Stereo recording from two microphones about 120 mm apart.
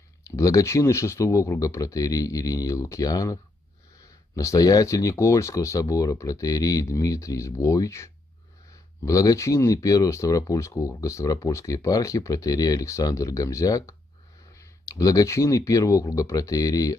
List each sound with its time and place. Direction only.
0.2 s speech: 30° left (ahead or behind)
4.4 s speech: 30° left (ahead or behind)